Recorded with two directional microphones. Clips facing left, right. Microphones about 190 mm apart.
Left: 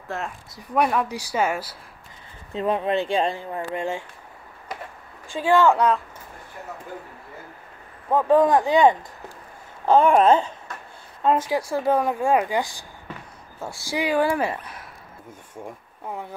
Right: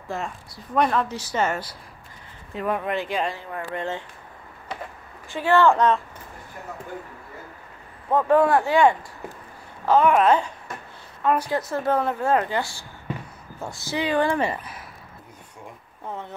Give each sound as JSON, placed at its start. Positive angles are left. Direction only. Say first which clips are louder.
{"t": 0.1, "sound": "speech", "louder": "even", "side_deg": 0}
{"t": 2.5, "sound": "speech", "louder": "left 3 dB", "side_deg": 25}
{"t": 3.7, "sound": "speech", "louder": "left 1 dB", "side_deg": 15}
{"t": 5.3, "sound": "speech", "louder": "even", "side_deg": 15}
{"t": 8.1, "sound": "speech", "louder": "left 1 dB", "side_deg": 10}
{"t": 9.8, "sound": "speech", "louder": "left 2 dB", "side_deg": 30}
{"t": 11.5, "sound": "speech", "louder": "left 2 dB", "side_deg": 10}
{"t": 16.1, "sound": "speech", "louder": "left 1 dB", "side_deg": 10}